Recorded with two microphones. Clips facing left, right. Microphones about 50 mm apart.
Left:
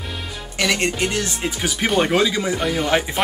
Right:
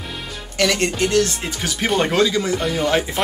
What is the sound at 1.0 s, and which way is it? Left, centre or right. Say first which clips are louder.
Speech: right 4 dB; centre.